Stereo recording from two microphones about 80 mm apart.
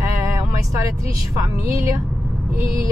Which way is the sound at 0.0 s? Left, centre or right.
Right.